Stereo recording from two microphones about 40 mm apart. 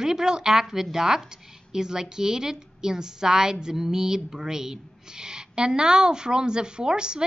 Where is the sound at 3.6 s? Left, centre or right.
Centre.